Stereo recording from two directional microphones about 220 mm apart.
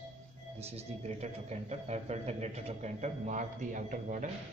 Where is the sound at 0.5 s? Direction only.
30° right (ahead or behind).